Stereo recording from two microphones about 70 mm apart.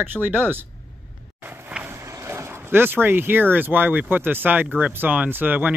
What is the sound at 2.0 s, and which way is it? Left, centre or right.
Speech, right.